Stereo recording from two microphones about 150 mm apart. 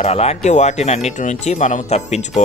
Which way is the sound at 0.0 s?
45° left (ahead or behind).